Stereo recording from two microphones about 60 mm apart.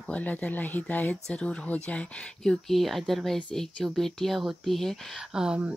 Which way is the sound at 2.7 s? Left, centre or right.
Centre.